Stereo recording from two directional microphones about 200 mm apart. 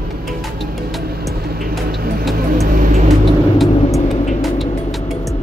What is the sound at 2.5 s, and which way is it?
Vehicle, 40° right (ahead or behind).